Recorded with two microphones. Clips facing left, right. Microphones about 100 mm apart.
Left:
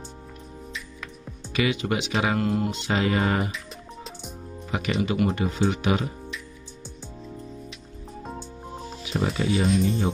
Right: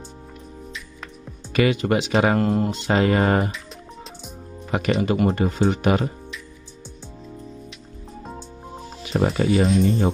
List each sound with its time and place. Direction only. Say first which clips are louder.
1.0 s speech: right 1 dB; 45° right (ahead or behind)
4.6 s speech: right 5 dB; 50° right (ahead or behind)
8.2 s music: even; centre (ahead or behind)
9.1 s speech: right 5 dB; 45° right (ahead or behind)
9.7 s speech: right 3 dB; centre (ahead or behind)